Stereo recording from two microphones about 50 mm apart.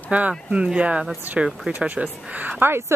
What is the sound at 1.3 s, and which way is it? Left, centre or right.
Speech, right.